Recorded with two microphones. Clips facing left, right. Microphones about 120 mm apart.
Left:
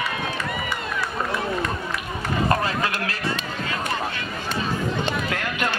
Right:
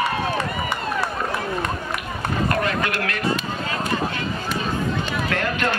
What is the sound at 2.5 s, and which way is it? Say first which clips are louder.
Run: left 1 dB; 30° left (ahead or behind).